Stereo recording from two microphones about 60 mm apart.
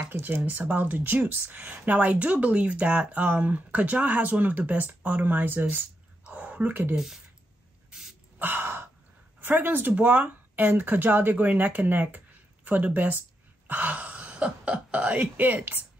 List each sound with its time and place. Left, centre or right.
0.1 s speech: right
6.2 s whispering: right
8.4 s sigh: right
9.4 s speech: right